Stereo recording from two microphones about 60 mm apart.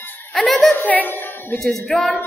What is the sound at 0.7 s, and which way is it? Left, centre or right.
Speech, left.